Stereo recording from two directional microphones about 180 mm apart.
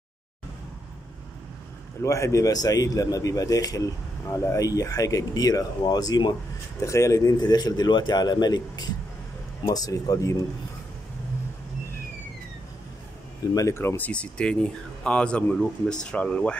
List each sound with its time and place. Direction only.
2.0 s a man's voice: 15° left (ahead or behind)
13.6 s speech: 15° left (ahead or behind)